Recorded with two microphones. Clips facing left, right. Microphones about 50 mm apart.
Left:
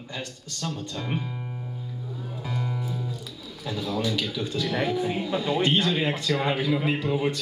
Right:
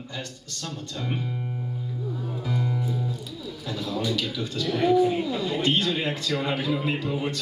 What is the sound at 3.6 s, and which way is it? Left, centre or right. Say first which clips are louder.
Speech: left 1 dB; left.